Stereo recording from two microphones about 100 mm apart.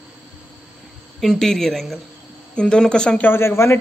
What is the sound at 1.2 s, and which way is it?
Speech, 5° left (ahead or behind).